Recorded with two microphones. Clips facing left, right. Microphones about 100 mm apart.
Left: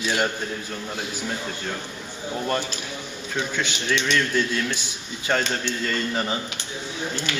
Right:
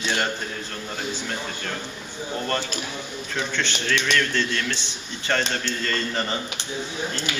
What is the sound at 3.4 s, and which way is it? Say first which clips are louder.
A man's voice: even; 10° left (ahead or behind).